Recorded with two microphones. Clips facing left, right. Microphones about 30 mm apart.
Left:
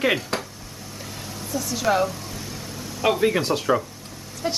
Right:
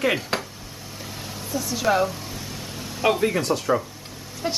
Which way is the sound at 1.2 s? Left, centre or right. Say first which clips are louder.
Even; centre.